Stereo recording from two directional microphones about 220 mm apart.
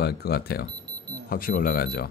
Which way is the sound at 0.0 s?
45° left (ahead or behind).